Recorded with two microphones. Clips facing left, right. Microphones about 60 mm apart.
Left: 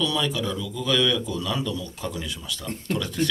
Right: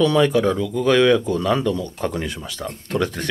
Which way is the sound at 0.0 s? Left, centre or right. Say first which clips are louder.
Right 10 dB; right.